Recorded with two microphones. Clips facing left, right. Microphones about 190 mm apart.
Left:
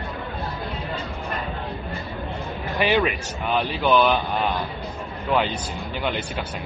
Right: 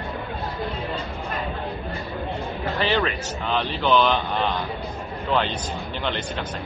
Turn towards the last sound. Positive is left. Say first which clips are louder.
# left 1 dB
turn(degrees=10)  # may be behind; listen again after turning